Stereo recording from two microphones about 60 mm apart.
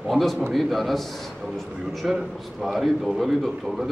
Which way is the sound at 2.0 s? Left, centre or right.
Centre.